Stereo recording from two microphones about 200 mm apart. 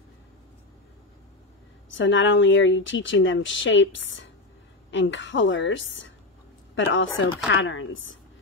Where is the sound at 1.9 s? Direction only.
65° left (ahead or behind).